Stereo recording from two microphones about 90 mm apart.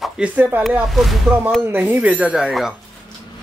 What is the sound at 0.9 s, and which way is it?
Speech, centre (ahead or behind).